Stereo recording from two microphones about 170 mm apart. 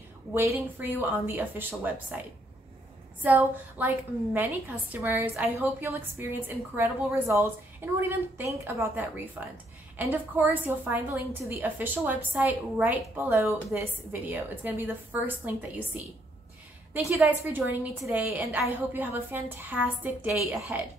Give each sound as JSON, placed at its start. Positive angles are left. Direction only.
{"t": 0.3, "sound": "a woman's voice", "side_deg": -15}
{"t": 3.2, "sound": "a woman's voice", "side_deg": -10}
{"t": 16.9, "sound": "a woman's voice", "side_deg": -10}